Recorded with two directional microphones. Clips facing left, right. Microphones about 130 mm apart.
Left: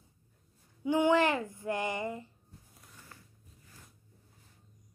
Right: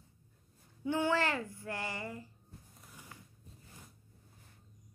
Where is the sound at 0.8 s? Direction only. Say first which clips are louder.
Left 6 dB; 15° left (ahead or behind).